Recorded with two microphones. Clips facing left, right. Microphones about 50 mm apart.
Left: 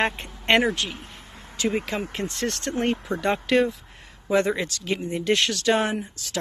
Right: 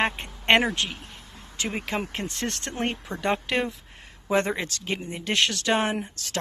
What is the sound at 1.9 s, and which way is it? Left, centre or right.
Speech, right.